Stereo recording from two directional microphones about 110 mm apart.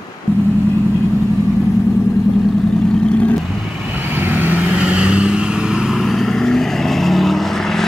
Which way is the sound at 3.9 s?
15° right (ahead or behind).